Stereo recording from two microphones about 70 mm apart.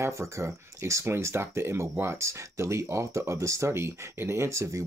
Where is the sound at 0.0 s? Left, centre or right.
Right.